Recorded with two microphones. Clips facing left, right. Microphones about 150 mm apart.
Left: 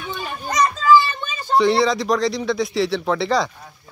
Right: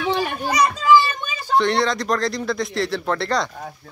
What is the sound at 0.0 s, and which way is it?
Children playing, 75° right (ahead or behind).